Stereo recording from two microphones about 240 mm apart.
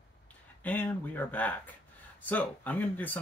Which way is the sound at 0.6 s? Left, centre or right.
Centre.